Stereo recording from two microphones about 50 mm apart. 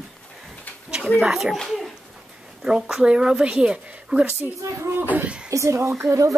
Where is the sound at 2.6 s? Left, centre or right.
Centre.